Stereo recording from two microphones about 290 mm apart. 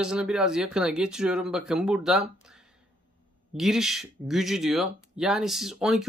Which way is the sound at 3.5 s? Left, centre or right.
Centre.